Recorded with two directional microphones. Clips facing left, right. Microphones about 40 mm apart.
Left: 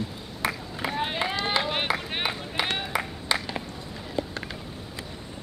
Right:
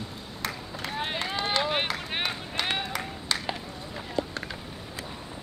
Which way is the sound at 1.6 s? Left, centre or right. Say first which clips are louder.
Right 1 dB; centre.